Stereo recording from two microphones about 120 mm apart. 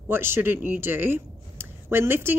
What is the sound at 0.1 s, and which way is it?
Speech, 20° right (ahead or behind).